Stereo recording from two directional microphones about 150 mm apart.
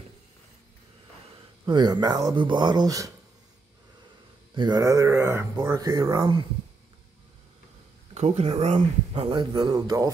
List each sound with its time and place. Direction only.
1.7 s speech: 30° right (ahead or behind)
4.6 s speech: 25° right (ahead or behind)
8.1 s speech: 45° right (ahead or behind); by 10.1 s 25° right (ahead or behind)